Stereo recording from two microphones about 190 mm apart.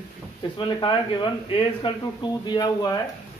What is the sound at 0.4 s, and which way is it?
Speech, 25° left (ahead or behind).